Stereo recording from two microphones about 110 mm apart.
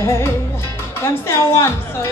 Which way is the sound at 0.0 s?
25° left (ahead or behind).